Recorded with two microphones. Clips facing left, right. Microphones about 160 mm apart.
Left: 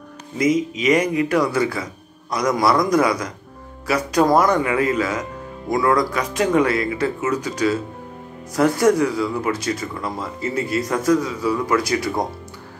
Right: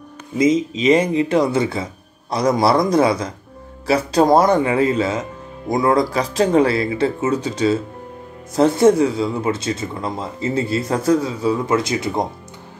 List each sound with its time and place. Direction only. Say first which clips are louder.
0.4 s speech: right 3 dB; 25° right (ahead or behind)